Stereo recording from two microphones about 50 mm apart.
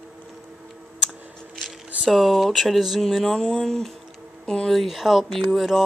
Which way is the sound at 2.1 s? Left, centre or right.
Centre.